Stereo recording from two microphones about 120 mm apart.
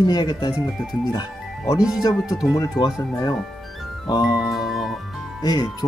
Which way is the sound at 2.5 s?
35° left (ahead or behind).